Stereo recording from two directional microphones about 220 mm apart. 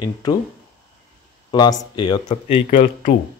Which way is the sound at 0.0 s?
20° left (ahead or behind).